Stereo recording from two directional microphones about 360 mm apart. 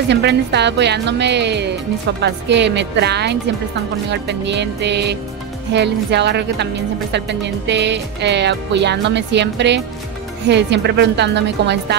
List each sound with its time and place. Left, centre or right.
0.1 s speech: right